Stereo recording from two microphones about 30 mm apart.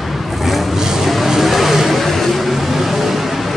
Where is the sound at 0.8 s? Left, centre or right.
Centre.